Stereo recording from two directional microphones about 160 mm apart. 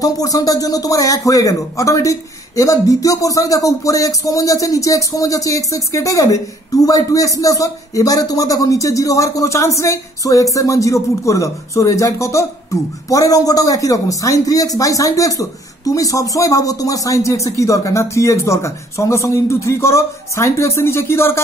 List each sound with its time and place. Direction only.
0.0 s a man's voice: 20° left (ahead or behind)